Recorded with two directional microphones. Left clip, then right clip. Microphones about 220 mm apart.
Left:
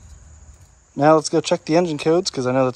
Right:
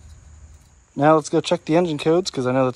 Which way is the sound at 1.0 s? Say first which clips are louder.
Left 1 dB; 10° left (ahead or behind).